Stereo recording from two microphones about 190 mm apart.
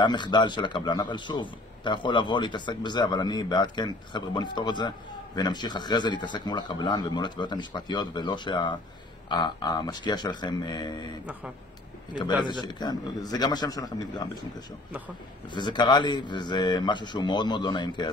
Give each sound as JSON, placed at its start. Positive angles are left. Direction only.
{"t": 0.0, "sound": "a man's voice", "side_deg": 25}
{"t": 12.4, "sound": "a man's voice", "side_deg": 25}
{"t": 14.9, "sound": "a man's voice", "side_deg": -10}
{"t": 15.5, "sound": "a man's voice", "side_deg": 25}